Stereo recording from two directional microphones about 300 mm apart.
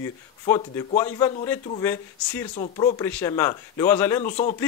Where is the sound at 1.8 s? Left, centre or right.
Centre.